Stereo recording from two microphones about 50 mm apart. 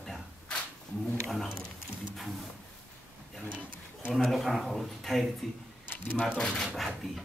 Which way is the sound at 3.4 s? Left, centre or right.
Right.